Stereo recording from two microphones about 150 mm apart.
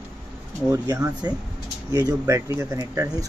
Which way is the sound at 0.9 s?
25° right (ahead or behind).